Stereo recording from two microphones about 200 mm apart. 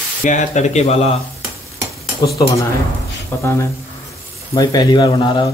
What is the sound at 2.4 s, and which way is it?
Speech, 15° left (ahead or behind).